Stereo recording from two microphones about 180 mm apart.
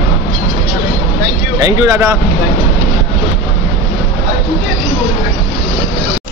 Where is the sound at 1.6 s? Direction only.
15° right (ahead or behind).